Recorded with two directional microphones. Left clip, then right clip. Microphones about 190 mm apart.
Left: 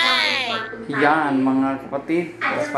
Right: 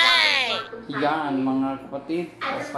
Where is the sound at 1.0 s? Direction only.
15° left (ahead or behind).